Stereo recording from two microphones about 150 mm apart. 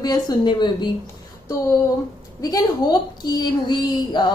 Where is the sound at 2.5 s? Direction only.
25° left (ahead or behind).